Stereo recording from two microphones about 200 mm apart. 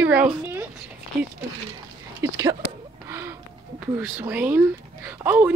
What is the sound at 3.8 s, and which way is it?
Speech, 10° right (ahead or behind).